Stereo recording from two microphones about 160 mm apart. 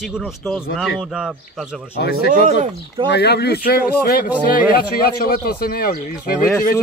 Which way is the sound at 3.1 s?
90° left.